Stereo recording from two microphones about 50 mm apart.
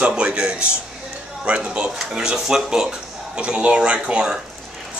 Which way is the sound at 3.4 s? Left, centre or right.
Right.